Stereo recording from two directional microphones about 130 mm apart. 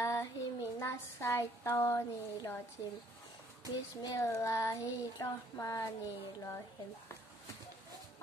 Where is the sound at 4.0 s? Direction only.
25° left (ahead or behind).